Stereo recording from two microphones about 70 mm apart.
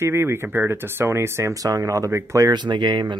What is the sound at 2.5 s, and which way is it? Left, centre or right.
Speech, right.